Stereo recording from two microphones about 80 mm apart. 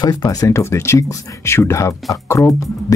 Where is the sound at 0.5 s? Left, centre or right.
Left.